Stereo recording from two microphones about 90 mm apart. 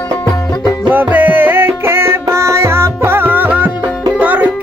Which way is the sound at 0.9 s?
20° right (ahead or behind).